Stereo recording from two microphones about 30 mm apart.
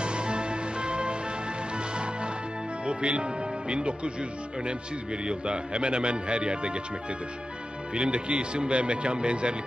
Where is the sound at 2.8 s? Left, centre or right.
Right.